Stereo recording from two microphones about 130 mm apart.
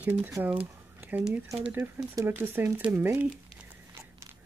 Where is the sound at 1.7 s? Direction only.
20° right (ahead or behind).